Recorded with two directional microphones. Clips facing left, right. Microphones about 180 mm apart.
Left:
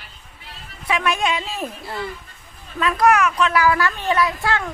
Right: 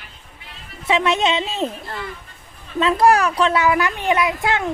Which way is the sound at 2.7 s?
30° right (ahead or behind).